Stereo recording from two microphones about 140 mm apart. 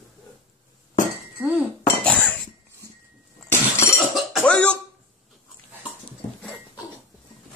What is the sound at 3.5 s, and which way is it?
Cough, 20° left (ahead or behind).